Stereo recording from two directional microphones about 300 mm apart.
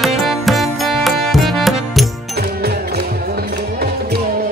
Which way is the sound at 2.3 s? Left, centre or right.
Right.